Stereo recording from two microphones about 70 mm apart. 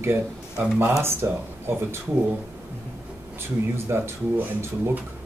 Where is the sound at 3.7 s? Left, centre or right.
Right.